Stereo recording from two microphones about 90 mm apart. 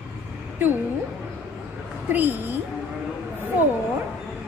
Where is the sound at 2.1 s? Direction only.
20° right (ahead or behind).